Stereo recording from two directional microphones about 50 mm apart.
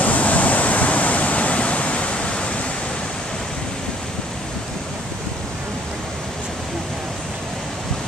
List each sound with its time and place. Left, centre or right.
0.0 s waves: left